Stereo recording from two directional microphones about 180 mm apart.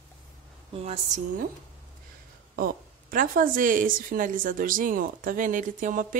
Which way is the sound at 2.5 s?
50° right (ahead or behind).